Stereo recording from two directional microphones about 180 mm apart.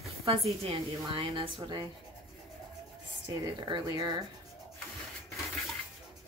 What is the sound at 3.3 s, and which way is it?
Speech, 20° right (ahead or behind).